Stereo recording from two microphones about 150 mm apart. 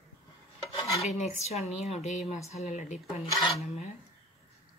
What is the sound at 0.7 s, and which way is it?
Dishes, 45° left (ahead or behind).